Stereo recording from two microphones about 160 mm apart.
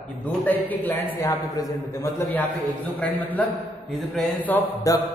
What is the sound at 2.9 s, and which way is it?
A man's voice, 10° left (ahead or behind).